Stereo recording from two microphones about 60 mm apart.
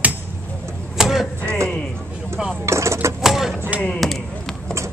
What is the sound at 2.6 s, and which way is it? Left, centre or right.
Speech, right.